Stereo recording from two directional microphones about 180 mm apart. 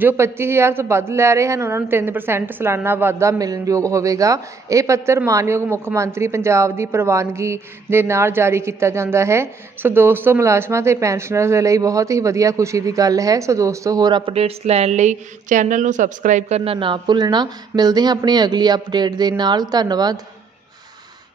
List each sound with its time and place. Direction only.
0.0 s a woman's voice: 15° right (ahead or behind)